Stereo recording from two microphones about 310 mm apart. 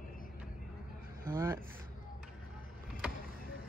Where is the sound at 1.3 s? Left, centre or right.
Centre.